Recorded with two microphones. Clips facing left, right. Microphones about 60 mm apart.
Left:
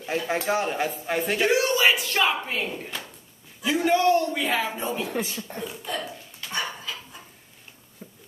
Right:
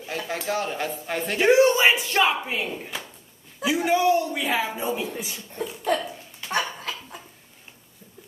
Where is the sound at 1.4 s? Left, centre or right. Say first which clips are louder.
Right 5 dB; right.